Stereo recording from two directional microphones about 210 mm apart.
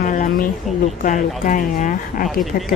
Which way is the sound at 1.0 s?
40° left (ahead or behind).